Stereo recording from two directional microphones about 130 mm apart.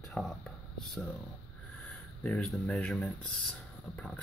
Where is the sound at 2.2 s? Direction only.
10° left (ahead or behind).